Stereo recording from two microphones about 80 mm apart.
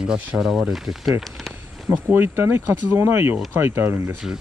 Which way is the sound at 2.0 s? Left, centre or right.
Right.